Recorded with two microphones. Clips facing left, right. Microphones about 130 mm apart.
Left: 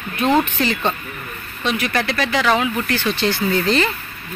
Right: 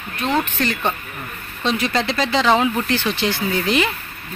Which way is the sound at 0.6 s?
Centre (ahead or behind).